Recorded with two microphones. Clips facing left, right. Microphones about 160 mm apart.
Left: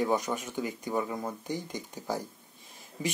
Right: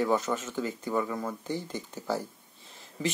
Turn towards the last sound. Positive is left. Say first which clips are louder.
# right 2 dB
turn(degrees=15)  # may be behind; listen again after turning